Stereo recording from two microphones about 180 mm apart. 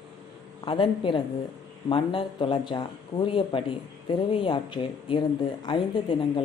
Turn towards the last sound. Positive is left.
turn(degrees=25)  # may be behind; listen again after turning